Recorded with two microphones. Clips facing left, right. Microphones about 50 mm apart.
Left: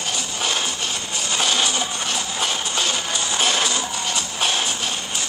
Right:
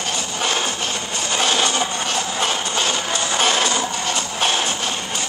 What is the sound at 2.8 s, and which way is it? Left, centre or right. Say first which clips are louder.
Music: right 3 dB; right.